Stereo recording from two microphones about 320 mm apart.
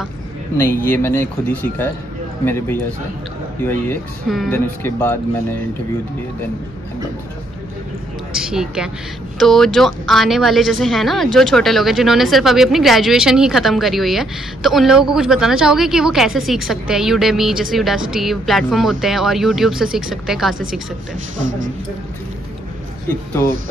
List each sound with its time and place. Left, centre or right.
0.8 s speech: centre
8.4 s a woman's voice: centre
21.4 s speech: right
23.0 s speech: centre